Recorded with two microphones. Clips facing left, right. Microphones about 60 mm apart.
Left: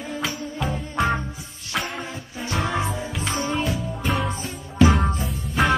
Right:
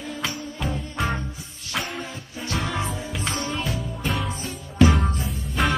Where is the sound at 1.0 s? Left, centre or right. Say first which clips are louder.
Left 4 dB; centre.